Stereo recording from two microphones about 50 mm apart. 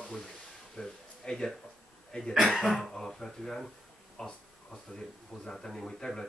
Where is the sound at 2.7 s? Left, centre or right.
Centre.